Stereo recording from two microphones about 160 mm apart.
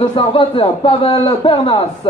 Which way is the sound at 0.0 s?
35° left (ahead or behind).